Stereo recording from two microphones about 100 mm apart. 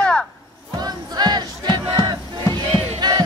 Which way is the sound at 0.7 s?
45° right (ahead or behind).